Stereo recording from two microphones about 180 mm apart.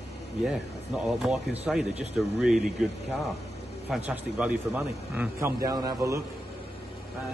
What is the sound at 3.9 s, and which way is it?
A man's voice, 10° right (ahead or behind).